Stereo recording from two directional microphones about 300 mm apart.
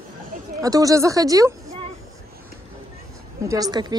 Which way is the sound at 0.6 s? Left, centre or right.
Centre.